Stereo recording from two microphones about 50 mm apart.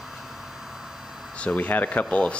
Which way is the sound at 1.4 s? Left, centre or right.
Left.